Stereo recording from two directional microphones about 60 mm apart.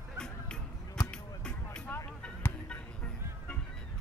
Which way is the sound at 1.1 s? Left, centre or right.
Centre.